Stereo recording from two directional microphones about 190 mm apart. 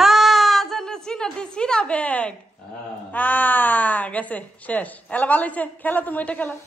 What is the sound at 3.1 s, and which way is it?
Speech, 10° left (ahead or behind).